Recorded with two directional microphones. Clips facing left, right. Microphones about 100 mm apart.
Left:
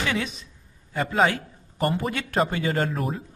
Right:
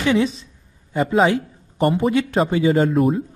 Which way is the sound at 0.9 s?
5° right (ahead or behind).